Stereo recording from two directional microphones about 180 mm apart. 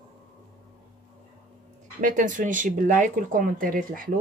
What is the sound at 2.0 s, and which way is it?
Speech, 45° right (ahead or behind).